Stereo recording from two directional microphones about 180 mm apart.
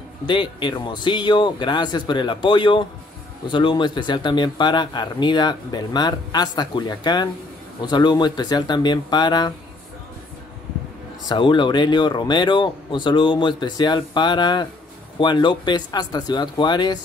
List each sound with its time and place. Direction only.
0.3 s speech: 25° left (ahead or behind)
11.2 s speech: 25° left (ahead or behind)